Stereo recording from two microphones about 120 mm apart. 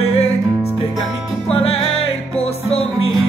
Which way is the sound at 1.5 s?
55° left (ahead or behind).